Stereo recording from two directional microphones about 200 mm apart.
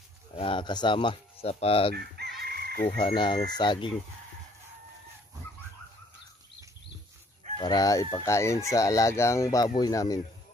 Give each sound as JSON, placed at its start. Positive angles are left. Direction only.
{"t": 0.4, "sound": "speech", "side_deg": 25}
{"t": 2.0, "sound": "chicken", "side_deg": -50}
{"t": 3.0, "sound": "speech", "side_deg": 25}
{"t": 7.5, "sound": "speech", "side_deg": 20}